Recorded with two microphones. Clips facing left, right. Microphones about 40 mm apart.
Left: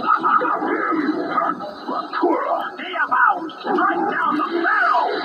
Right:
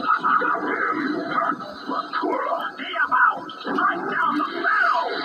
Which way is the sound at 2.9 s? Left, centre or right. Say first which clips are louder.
Left 2 dB; centre.